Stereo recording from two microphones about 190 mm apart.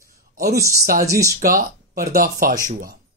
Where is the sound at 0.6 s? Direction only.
15° right (ahead or behind).